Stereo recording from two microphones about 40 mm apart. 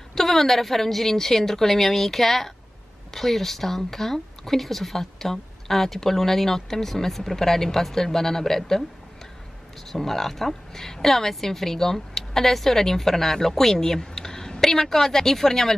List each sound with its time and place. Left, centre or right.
0.1 s speech: centre
9.8 s speech: centre